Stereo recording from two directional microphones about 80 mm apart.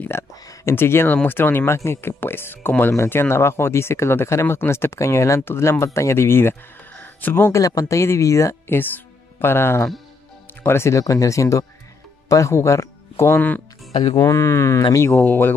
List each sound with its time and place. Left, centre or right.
0.1 s speech: left
7.5 s speech: left
8.7 s speech: left
15.1 s speech: left